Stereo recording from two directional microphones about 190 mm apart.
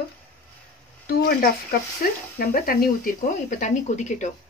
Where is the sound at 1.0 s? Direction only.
55° left (ahead or behind).